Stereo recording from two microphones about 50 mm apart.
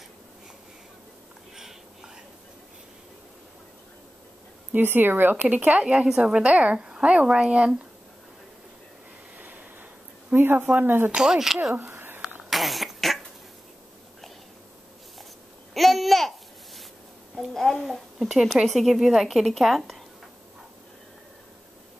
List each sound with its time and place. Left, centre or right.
1.5 s a sound: centre
4.7 s speech: right; by 7.7 s centre
9.4 s a sound: right
10.3 s speech: right
11.1 s speech: centre
12.2 s cough: centre
15.7 s babbling: centre
18.7 s a woman's voice: centre